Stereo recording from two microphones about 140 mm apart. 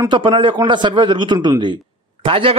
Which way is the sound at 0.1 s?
35° right (ahead or behind).